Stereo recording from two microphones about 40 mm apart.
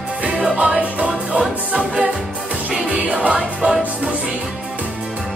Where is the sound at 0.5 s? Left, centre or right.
Right.